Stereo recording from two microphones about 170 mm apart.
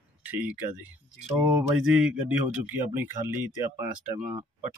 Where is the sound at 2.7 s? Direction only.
10° right (ahead or behind).